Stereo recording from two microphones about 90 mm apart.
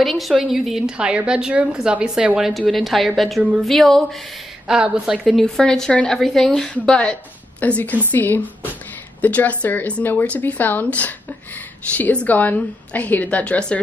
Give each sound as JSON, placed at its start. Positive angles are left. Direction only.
{"t": 0.0, "sound": "a woman's voice", "side_deg": 0}
{"t": 4.6, "sound": "a woman's voice", "side_deg": -10}